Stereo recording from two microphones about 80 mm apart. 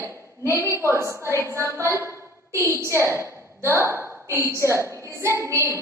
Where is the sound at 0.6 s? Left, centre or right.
Right.